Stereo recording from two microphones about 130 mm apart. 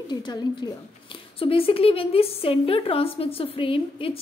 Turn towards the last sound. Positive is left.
turn(degrees=40)  # may be behind; listen again after turning